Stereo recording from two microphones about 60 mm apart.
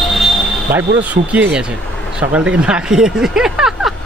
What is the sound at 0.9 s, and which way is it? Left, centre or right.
Speech, right.